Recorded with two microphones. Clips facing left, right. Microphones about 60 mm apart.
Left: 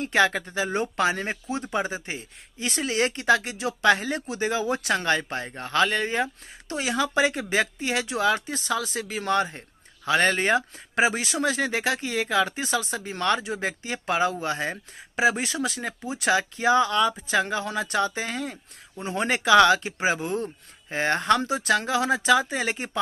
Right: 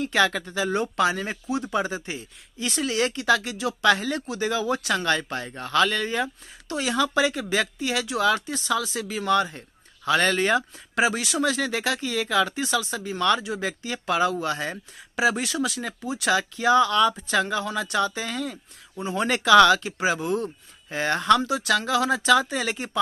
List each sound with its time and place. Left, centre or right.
0.0 s speech: left